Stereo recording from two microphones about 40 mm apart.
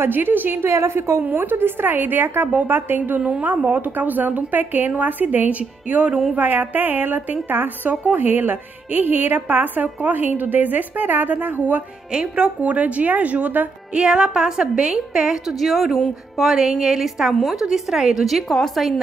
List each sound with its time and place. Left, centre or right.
0.0 s a woman's voice: right
0.6 s a woman's voice: right
1.2 s a woman's voice: right
3.3 s speech: right
5.5 s a woman's voice: right
7.9 s speech: right
12.1 s a woman's voice: right
12.6 s a woman's voice: right
13.9 s a woman's voice: right
15.6 s a woman's voice: centre